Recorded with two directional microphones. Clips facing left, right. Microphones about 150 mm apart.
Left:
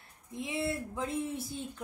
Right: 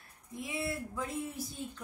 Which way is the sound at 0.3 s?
25° left (ahead or behind).